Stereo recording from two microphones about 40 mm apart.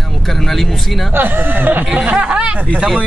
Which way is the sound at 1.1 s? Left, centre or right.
Right.